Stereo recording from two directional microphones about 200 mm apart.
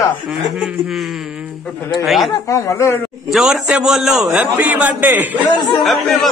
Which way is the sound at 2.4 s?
15° left (ahead or behind).